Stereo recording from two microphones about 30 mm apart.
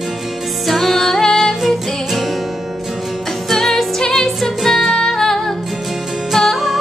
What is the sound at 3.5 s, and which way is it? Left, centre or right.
Music, centre.